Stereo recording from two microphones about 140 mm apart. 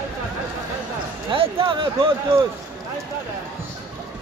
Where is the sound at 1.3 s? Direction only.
40° right (ahead or behind).